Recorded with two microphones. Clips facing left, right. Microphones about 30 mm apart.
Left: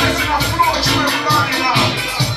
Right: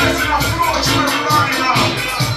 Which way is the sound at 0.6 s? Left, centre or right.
Left.